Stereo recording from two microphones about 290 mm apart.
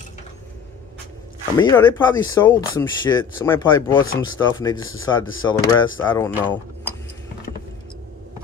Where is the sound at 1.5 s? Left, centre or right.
Centre.